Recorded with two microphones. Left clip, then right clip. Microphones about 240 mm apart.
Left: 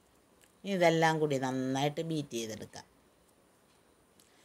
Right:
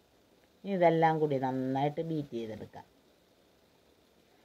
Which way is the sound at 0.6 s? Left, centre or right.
Centre.